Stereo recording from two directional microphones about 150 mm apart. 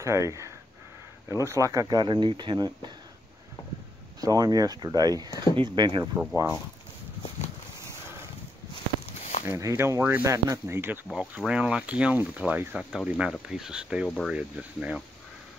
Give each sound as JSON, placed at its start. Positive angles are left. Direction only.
{"t": 0.0, "sound": "speech", "side_deg": -20}
{"t": 4.2, "sound": "speech", "side_deg": -25}
{"t": 6.3, "sound": "speech", "side_deg": -15}
{"t": 9.5, "sound": "speech", "side_deg": -20}
{"t": 11.1, "sound": "speech", "side_deg": -5}